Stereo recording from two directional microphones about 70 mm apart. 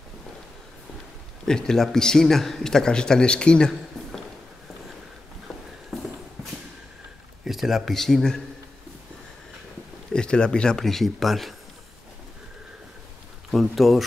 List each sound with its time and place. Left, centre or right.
1.4 s speech: centre
5.9 s a sound: centre
7.4 s speech: centre
10.1 s speech: centre
13.5 s speech: centre